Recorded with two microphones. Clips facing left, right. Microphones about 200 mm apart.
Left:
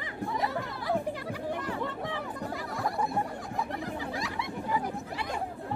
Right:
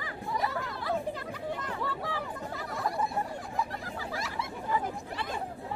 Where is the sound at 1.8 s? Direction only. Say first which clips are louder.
Left 1 dB; 20° left (ahead or behind).